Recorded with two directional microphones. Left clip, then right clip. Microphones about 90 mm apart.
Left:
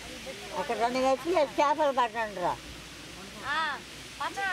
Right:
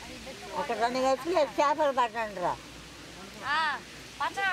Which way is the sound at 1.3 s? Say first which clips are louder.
Even; 5° right (ahead or behind).